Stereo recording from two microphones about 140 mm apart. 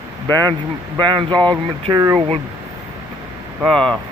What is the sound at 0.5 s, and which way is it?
Speech, 35° right (ahead or behind).